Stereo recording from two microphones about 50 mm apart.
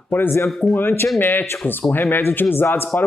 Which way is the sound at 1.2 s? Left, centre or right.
Left.